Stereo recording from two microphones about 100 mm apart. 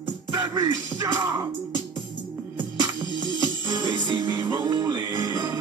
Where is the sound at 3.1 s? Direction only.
50° left (ahead or behind).